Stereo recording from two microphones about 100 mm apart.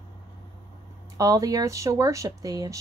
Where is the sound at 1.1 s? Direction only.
35° right (ahead or behind).